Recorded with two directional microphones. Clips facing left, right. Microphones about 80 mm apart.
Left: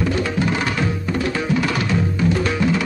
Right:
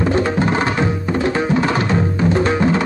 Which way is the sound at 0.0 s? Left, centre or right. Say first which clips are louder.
Right 4 dB; right.